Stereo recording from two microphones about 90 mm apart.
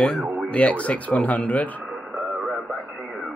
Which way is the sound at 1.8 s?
10° right (ahead or behind).